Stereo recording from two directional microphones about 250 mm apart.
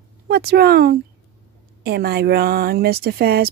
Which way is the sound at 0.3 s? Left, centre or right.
Right.